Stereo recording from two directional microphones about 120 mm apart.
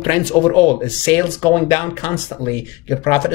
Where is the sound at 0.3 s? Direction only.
20° left (ahead or behind).